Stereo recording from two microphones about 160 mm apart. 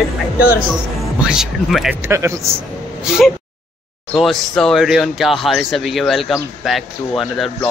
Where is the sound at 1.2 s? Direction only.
5° right (ahead or behind).